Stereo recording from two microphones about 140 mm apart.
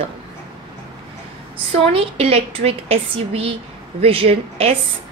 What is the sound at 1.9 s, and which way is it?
A woman's voice, 45° right (ahead or behind).